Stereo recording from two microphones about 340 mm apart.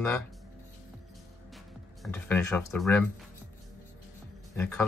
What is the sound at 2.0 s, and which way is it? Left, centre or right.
Speech, centre.